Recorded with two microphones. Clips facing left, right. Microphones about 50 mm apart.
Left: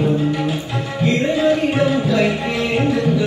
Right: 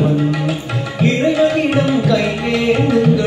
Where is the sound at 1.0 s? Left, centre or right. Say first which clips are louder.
Right 4 dB; right.